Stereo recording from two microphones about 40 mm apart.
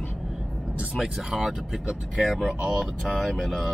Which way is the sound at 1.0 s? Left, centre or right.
Centre.